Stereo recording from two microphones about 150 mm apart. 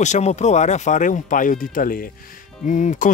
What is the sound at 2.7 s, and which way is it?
Speech, 55° left (ahead or behind).